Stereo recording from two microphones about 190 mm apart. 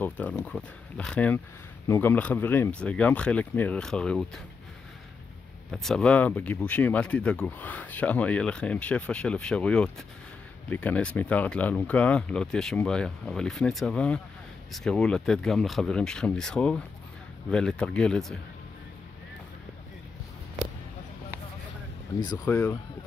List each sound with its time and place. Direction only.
0.0 s speech: 10° left (ahead or behind)
5.7 s speech: centre (ahead or behind)
22.2 s speech: 20° left (ahead or behind)